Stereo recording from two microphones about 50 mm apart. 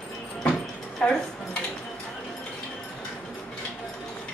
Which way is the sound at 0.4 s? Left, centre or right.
Centre.